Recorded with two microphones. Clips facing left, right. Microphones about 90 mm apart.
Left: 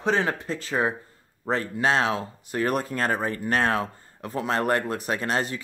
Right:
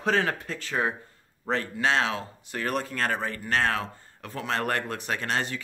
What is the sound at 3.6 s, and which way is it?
Speech, 30° left (ahead or behind).